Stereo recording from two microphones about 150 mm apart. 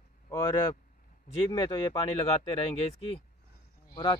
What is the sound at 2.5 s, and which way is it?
Speech, 40° left (ahead or behind).